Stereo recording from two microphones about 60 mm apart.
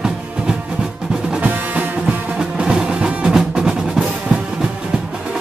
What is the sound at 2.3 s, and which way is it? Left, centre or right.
Music, centre.